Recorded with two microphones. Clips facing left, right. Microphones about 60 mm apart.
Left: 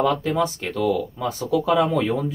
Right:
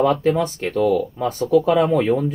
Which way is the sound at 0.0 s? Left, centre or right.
Right.